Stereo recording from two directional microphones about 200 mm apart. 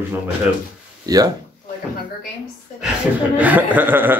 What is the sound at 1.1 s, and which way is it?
Speech, 20° right (ahead or behind).